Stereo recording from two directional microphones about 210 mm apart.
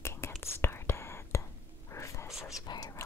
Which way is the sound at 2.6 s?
20° left (ahead or behind).